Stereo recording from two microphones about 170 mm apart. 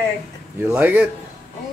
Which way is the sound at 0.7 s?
10° right (ahead or behind).